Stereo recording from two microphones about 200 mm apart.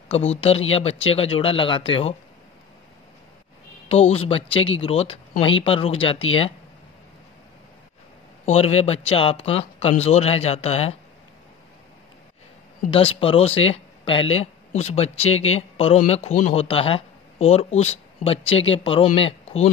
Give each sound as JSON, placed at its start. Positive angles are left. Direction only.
{"t": 0.1, "sound": "speech", "side_deg": 30}
{"t": 3.9, "sound": "speech", "side_deg": 30}
{"t": 8.5, "sound": "speech", "side_deg": 30}
{"t": 12.9, "sound": "speech", "side_deg": 25}